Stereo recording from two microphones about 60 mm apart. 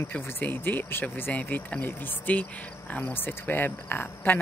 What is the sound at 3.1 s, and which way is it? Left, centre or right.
Speech, left.